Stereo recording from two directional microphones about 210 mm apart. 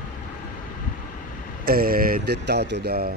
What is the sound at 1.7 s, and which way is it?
Speech, 45° right (ahead or behind).